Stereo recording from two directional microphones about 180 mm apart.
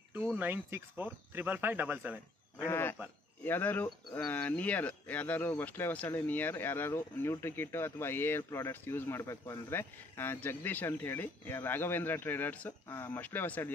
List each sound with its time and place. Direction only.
0.4 s speech: 10° right (ahead or behind)
2.7 s speech: 10° left (ahead or behind)